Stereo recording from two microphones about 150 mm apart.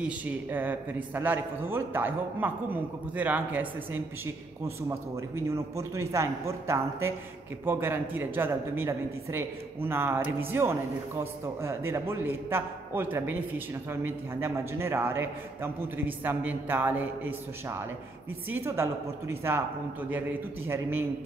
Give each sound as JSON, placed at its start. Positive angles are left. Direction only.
{"t": 0.0, "sound": "a woman's voice", "side_deg": -10}